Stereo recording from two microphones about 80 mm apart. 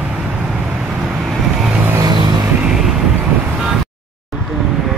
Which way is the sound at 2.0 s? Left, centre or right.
Right.